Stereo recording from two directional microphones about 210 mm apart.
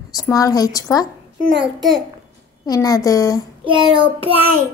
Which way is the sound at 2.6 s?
15° left (ahead or behind).